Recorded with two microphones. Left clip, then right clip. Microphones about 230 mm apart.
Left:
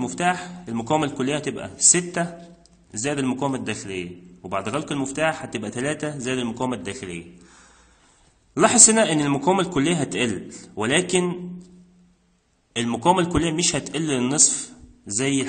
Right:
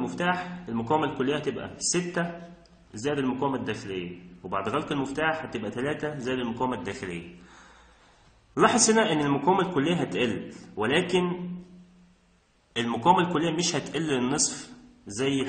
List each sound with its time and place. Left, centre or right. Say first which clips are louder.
0.0 s a man's voice: left 4 dB; left
8.5 s a man's voice: left 4 dB; left
12.7 s a man's voice: left 2 dB; left